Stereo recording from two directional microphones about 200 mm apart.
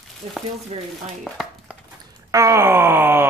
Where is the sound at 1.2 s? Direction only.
Centre (ahead or behind).